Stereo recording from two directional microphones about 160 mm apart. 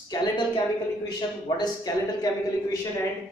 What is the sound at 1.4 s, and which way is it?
Speech, 25° left (ahead or behind).